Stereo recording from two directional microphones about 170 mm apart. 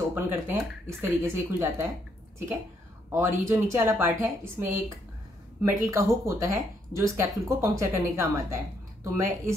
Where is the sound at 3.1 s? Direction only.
15° right (ahead or behind).